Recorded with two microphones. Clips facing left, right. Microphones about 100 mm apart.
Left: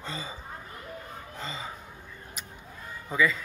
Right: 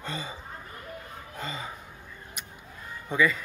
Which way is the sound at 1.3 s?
10° right (ahead or behind).